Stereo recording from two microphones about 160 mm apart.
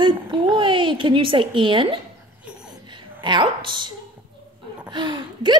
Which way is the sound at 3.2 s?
30° right (ahead or behind).